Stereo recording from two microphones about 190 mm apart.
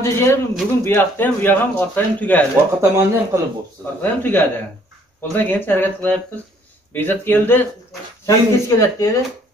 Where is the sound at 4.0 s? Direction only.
10° left (ahead or behind).